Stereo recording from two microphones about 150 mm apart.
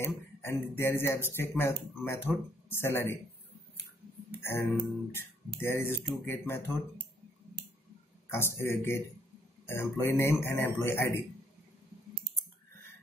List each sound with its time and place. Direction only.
0.0 s speech: 15° left (ahead or behind)
4.3 s speech: 15° left (ahead or behind)
8.3 s speech: 15° left (ahead or behind)